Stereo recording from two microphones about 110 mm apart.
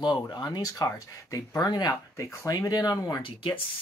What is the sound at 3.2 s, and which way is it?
Speech, 50° left (ahead or behind).